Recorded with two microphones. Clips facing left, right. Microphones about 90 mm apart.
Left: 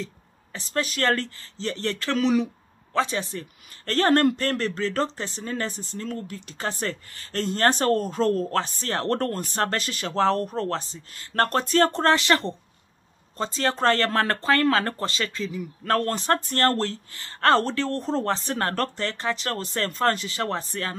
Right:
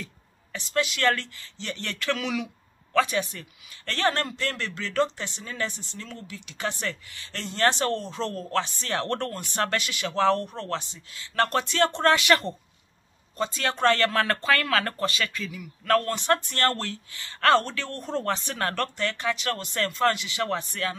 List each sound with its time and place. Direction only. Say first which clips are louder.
0.0 s speech: left 6 dB; 35° left (ahead or behind)